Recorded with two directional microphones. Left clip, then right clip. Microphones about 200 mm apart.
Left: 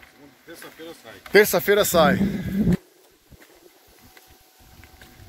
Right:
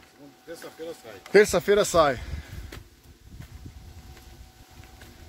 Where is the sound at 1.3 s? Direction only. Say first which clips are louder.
Left 2 dB; 25° left (ahead or behind).